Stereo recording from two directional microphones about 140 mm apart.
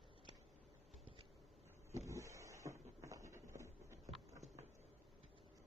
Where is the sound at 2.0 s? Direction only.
20° right (ahead or behind).